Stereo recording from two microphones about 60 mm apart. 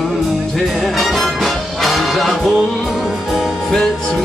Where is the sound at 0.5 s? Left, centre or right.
Centre.